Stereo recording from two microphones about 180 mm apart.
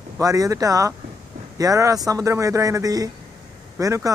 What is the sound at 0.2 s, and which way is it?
Speech, 20° right (ahead or behind).